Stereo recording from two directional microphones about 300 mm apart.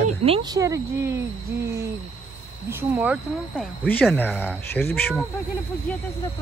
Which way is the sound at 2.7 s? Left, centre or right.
Centre.